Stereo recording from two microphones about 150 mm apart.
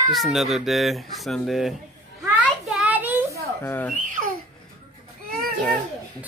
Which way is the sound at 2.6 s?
5° right (ahead or behind).